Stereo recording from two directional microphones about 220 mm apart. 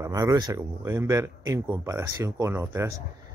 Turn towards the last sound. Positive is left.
turn(degrees=-15)  # may be behind; listen again after turning